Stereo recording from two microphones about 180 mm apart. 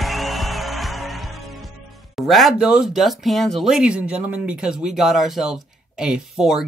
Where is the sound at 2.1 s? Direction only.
Centre (ahead or behind).